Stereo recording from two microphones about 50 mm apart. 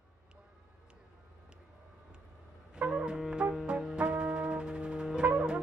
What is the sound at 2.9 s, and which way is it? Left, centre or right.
Music, centre.